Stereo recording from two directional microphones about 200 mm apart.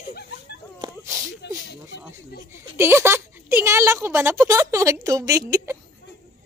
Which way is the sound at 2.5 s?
10° right (ahead or behind).